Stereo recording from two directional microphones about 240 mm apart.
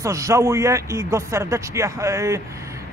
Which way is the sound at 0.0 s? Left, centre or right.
Centre.